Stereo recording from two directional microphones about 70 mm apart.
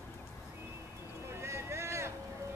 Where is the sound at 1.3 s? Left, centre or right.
Right.